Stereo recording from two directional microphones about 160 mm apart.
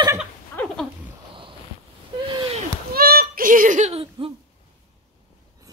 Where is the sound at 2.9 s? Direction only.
70° right (ahead or behind); by 4.3 s 35° right (ahead or behind).